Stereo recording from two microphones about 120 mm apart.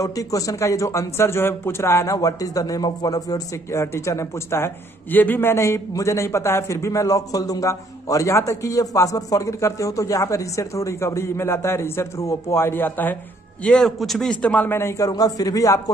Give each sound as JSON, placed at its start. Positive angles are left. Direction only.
{"t": 0.0, "sound": "a man's voice", "side_deg": 30}
{"t": 13.7, "sound": "a man's voice", "side_deg": 5}